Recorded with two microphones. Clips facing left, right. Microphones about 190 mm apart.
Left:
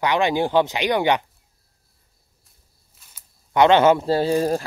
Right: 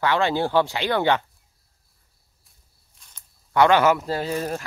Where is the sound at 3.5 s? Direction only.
20° left (ahead or behind).